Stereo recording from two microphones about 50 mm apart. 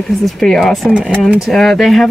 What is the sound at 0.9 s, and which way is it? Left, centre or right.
Speech, right.